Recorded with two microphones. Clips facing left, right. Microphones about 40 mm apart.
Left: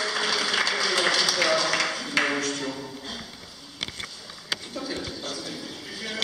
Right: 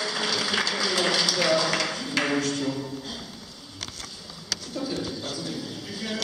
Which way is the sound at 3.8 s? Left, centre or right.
Left.